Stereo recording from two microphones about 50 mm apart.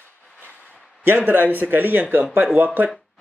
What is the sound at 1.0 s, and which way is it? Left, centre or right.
A man's voice, right.